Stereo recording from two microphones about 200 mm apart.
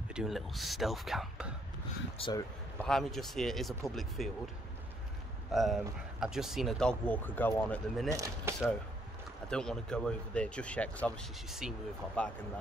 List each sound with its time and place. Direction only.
0.1 s speech: centre (ahead or behind)
2.1 s speech: 25° left (ahead or behind)
2.8 s speech: centre (ahead or behind)
5.5 s speech: centre (ahead or behind)
8.1 s speech: 15° right (ahead or behind)
9.5 s speech: 5° left (ahead or behind)